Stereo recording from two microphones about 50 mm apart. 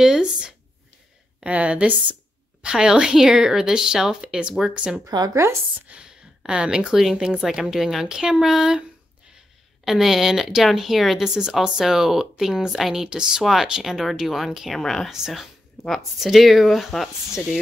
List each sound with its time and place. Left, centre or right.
0.0 s speech: centre
1.4 s a woman's voice: right
2.6 s speech: centre
5.3 s speech: right
5.9 s speech: centre
9.8 s speech: centre
14.7 s speech: centre
15.0 s speech: centre